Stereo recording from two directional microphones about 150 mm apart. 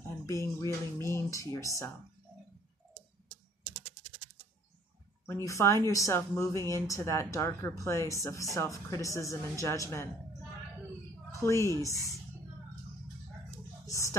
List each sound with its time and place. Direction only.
0.3 s speech: 20° left (ahead or behind)
5.2 s speech: 20° left (ahead or behind)
11.4 s speech: 20° left (ahead or behind)
13.8 s speech: 20° left (ahead or behind)